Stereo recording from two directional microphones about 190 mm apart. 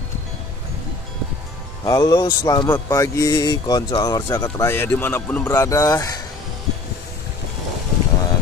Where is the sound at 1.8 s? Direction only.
20° left (ahead or behind).